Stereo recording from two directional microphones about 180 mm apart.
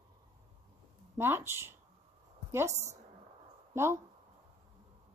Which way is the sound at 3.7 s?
15° right (ahead or behind).